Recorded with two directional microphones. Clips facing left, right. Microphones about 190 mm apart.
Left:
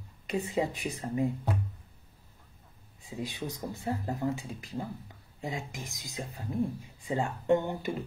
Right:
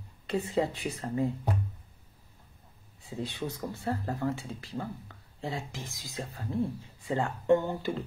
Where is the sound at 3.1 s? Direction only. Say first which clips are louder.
Right 1 dB; 15° left (ahead or behind).